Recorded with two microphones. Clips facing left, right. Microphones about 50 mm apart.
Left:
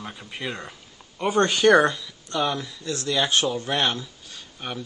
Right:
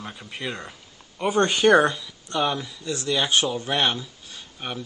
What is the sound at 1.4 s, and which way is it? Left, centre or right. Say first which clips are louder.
Speech: even; right.